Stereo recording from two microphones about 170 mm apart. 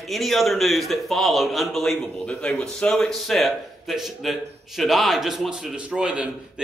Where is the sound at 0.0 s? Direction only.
Centre (ahead or behind).